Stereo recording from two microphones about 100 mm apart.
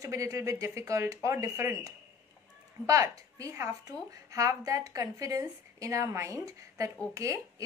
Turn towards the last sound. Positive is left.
turn(degrees=-30)  # may be behind; listen again after turning